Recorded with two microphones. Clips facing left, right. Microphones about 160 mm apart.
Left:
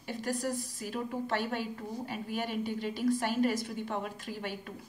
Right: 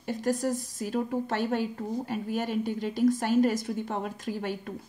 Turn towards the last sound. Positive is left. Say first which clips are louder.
# right 6 dB
turn(degrees=-45)  # may be behind; listen again after turning